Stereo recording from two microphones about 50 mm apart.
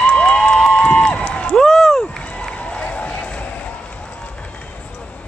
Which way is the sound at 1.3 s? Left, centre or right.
Left.